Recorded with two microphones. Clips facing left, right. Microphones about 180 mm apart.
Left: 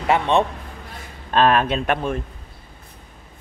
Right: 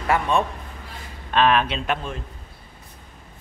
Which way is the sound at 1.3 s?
40° left (ahead or behind).